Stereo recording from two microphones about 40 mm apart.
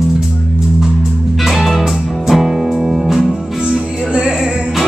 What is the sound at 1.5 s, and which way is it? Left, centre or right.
Music, centre.